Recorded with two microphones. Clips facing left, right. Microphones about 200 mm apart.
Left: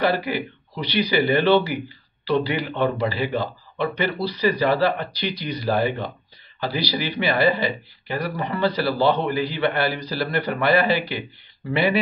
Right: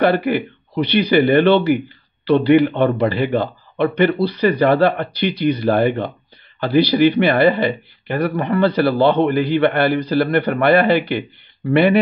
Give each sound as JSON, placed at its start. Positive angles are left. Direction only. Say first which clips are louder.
{"t": 0.0, "sound": "a man's voice", "louder": "right 6 dB", "side_deg": -55}